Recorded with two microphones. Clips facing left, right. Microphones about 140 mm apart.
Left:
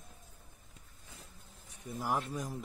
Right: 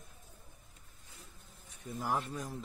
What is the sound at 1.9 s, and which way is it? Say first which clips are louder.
Speech: left 1 dB; 10° left (ahead or behind).